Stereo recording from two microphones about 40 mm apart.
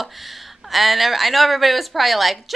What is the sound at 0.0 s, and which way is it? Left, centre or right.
Speech, centre.